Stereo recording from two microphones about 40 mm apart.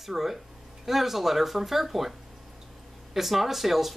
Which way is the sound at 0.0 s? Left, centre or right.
Centre.